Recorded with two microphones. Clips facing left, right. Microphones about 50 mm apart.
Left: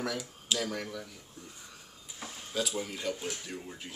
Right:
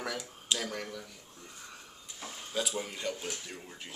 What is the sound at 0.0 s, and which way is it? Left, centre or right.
Speech, centre.